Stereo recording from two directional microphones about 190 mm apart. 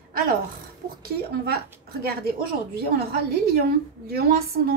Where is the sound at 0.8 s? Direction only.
55° right (ahead or behind).